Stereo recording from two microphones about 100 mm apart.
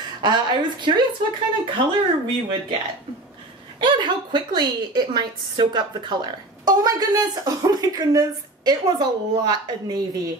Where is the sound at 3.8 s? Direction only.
50° right (ahead or behind).